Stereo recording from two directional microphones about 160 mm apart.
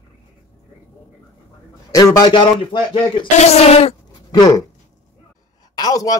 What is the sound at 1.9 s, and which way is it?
Speech, 25° left (ahead or behind).